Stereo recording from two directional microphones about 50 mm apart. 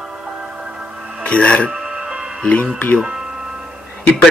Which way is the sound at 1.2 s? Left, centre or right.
Left.